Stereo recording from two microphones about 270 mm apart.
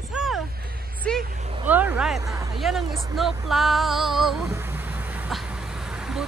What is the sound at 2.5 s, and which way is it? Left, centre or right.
Female singing, centre.